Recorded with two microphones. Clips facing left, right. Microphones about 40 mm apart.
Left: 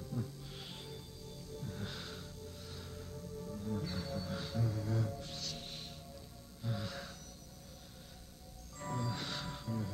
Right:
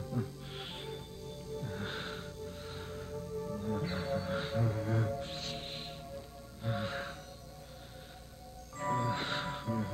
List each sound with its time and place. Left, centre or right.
0.0 s music: right
8.7 s music: right